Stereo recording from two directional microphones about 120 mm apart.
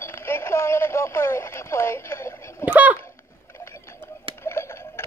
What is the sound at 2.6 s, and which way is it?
Speech, 15° right (ahead or behind).